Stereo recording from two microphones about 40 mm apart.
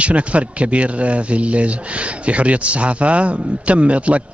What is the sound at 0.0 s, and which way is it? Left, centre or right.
A man's voice, right.